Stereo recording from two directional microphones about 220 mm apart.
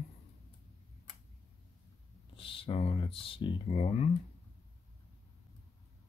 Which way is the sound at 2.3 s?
25° left (ahead or behind).